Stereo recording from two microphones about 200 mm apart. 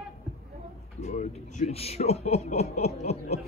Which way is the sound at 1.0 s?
35° left (ahead or behind).